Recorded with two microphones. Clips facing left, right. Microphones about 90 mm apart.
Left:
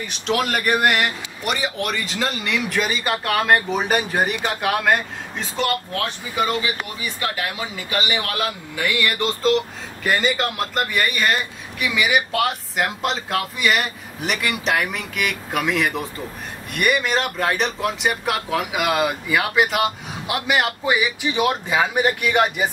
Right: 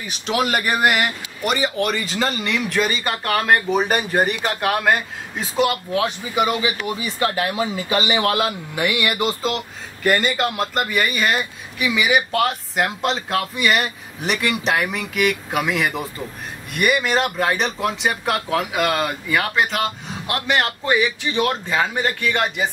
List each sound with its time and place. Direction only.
0.0 s speech: 5° right (ahead or behind)
7.3 s speech: 35° right (ahead or behind); by 22.7 s 15° left (ahead or behind)